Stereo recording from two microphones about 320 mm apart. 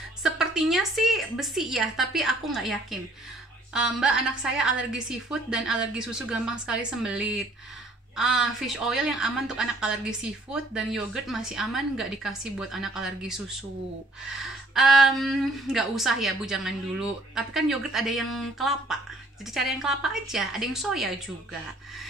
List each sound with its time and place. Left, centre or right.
0.2 s speech: centre